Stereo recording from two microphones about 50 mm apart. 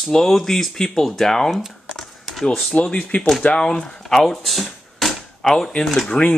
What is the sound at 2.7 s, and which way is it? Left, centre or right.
Speech, left.